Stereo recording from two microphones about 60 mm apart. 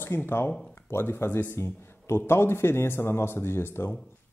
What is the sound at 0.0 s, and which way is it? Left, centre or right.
Speech, left.